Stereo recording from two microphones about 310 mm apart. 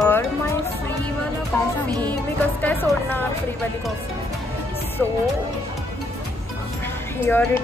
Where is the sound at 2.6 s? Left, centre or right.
Centre.